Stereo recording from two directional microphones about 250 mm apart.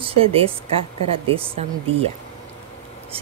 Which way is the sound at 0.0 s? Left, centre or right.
Right.